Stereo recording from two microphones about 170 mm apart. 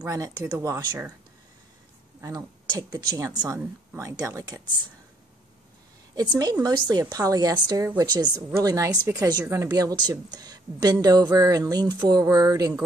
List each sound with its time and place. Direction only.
0.0 s a woman's voice: 20° right (ahead or behind)
2.2 s a woman's voice: 25° right (ahead or behind)
6.6 s a woman's voice: 25° right (ahead or behind)